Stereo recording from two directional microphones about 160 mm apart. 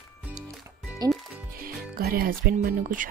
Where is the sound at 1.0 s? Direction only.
25° right (ahead or behind).